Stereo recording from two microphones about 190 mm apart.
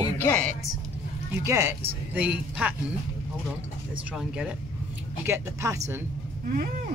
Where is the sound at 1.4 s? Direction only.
15° right (ahead or behind).